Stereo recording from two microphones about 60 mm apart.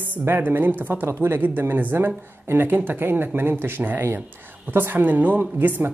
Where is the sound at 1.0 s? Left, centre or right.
Right.